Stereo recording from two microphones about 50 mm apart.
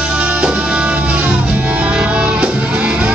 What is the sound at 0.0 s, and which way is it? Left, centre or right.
Music, centre.